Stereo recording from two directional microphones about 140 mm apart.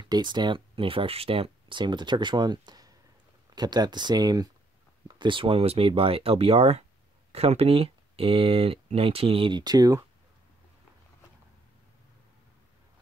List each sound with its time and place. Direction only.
0.0 s speech: 30° right (ahead or behind)